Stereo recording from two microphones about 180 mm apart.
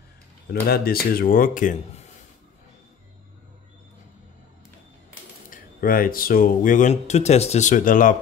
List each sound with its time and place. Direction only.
0.7 s speech: 55° left (ahead or behind)
5.5 s speech: 50° left (ahead or behind)